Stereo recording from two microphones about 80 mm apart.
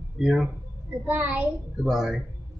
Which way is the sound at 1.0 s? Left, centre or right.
Right.